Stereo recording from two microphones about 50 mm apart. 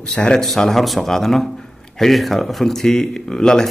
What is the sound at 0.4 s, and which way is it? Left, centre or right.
Speech, centre.